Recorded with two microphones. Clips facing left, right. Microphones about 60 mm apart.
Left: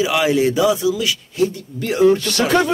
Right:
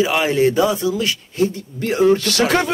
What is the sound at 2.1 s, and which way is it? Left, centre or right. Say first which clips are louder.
Speech: right 1 dB; right.